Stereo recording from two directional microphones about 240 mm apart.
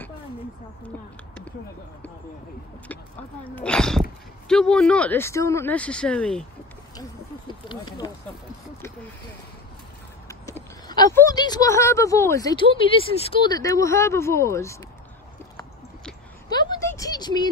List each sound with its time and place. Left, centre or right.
3.4 s speech: centre
7.0 s owl: centre
10.9 s speech: centre
16.4 s a sound: centre